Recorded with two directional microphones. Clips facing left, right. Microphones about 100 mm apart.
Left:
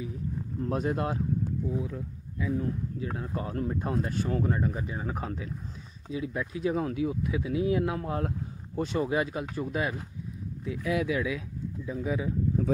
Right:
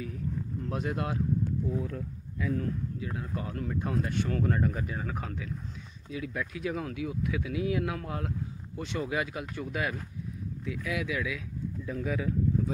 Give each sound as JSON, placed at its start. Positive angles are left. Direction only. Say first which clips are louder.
{"t": 0.0, "sound": "a sound", "louder": "even", "side_deg": 20}
{"t": 0.7, "sound": "speech", "louder": "left 4 dB", "side_deg": 35}
{"t": 1.7, "sound": "speech", "louder": "even", "side_deg": 10}
{"t": 3.0, "sound": "speech", "louder": "left 2 dB", "side_deg": 35}
{"t": 4.3, "sound": "speech", "louder": "left 1 dB", "side_deg": 20}
{"t": 11.8, "sound": "speech", "louder": "left 2 dB", "side_deg": 15}